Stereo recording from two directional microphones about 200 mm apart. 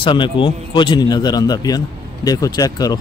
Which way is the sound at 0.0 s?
25° left (ahead or behind).